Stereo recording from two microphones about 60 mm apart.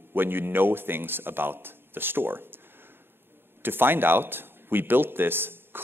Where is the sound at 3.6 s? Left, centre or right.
Right.